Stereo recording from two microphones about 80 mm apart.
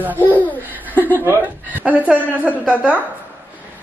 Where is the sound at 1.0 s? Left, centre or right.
Right.